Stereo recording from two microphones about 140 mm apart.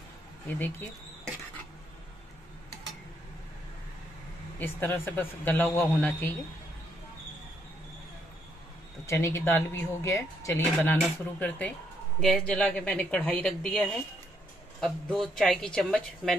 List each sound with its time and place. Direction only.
0.5 s speech: 15° left (ahead or behind)
4.6 s speech: 15° left (ahead or behind)
9.0 s speech: 20° left (ahead or behind); by 16.3 s 5° left (ahead or behind)